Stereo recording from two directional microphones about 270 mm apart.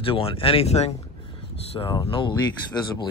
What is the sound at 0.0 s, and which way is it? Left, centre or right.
Speech, centre.